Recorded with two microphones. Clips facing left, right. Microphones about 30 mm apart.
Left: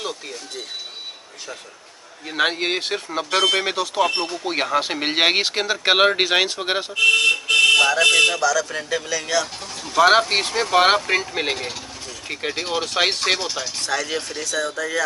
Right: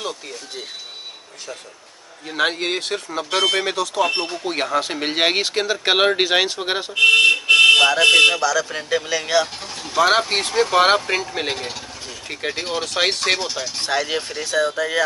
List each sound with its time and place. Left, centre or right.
0.0 s speech: centre
2.2 s speech: centre
4.1 s speech: centre
4.5 s speech: centre
7.0 s speech: right
9.9 s speech: centre
13.7 s speech: right